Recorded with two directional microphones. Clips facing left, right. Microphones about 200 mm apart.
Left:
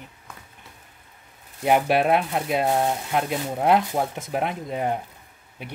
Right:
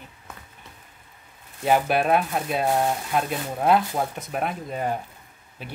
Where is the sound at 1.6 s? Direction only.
20° left (ahead or behind).